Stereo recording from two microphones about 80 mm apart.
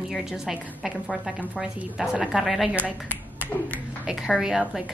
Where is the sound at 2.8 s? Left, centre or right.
Centre.